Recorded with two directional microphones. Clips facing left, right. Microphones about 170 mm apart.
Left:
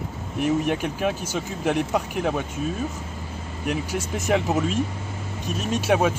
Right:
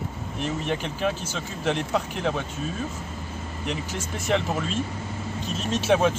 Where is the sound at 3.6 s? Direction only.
10° left (ahead or behind).